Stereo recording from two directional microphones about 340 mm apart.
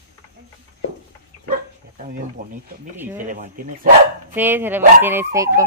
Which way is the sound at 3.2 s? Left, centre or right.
Right.